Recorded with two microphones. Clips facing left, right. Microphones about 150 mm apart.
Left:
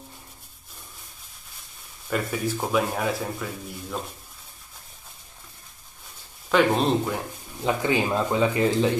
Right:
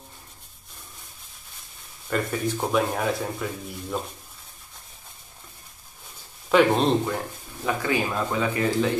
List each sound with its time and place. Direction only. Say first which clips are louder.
2.0 s speech: right 1 dB; 5° left (ahead or behind)
6.5 s speech: right 2 dB; centre (ahead or behind)
7.6 s speech: left 2 dB; 20° left (ahead or behind)